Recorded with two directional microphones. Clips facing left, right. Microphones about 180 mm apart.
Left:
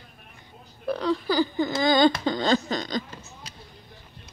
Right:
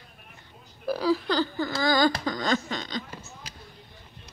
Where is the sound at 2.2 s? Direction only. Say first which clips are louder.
Left 4 dB; 30° left (ahead or behind).